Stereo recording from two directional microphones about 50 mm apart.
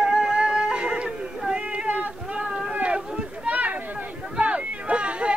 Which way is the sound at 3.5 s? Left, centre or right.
Right.